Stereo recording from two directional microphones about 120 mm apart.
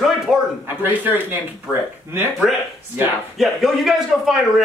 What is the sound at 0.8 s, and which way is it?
Speech, 15° right (ahead or behind).